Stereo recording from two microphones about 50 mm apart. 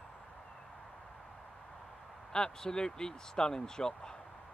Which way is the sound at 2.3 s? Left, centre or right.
Centre.